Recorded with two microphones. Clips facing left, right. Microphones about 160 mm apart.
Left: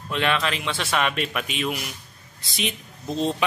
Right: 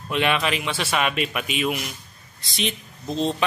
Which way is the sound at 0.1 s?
15° right (ahead or behind).